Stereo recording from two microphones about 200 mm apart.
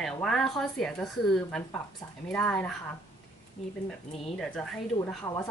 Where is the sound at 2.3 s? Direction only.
5° left (ahead or behind).